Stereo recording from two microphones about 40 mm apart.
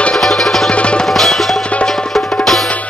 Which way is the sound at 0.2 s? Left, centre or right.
Centre.